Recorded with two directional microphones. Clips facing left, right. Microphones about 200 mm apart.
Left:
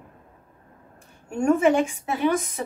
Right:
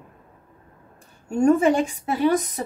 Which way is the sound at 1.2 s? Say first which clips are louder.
Right 2 dB; 35° right (ahead or behind).